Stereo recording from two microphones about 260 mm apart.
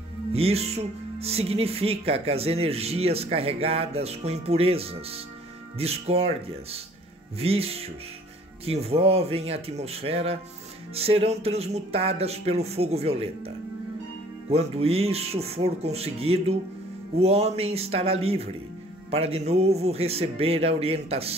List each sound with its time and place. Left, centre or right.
0.3 s speech: right
14.5 s speech: right